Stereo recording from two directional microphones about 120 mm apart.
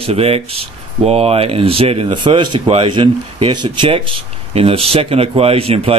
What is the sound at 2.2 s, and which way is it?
Speech, 40° right (ahead or behind).